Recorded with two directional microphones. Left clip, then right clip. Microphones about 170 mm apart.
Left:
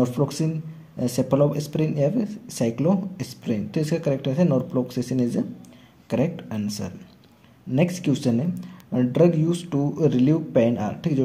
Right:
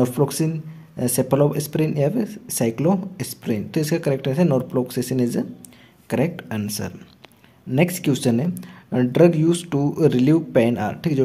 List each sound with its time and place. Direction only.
0.0 s speech: 30° right (ahead or behind)